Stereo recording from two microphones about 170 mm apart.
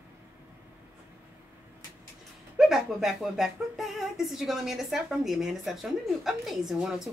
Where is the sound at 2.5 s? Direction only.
5° right (ahead or behind).